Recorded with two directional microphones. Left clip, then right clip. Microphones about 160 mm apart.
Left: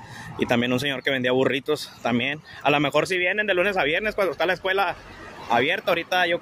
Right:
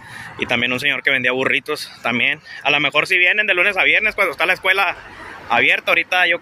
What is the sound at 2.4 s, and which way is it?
Speech, 50° left (ahead or behind).